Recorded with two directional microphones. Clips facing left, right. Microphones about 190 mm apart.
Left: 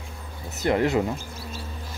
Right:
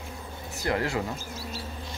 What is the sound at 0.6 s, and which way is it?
Speech, 20° left (ahead or behind).